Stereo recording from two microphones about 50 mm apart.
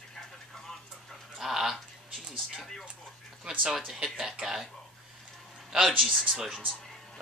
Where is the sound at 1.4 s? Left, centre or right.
Centre.